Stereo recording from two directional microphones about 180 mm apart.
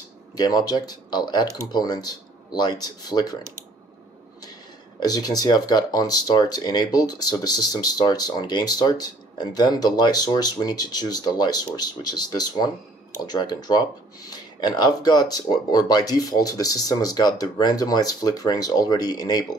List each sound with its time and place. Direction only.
0.4 s speech: 20° left (ahead or behind)
5.0 s speech: 20° left (ahead or behind)